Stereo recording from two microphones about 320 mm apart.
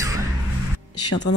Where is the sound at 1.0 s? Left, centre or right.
Left.